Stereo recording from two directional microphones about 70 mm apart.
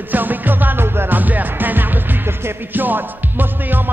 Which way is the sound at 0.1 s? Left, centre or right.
Right.